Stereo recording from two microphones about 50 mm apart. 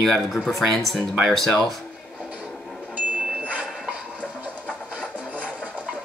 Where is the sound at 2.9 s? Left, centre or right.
Right.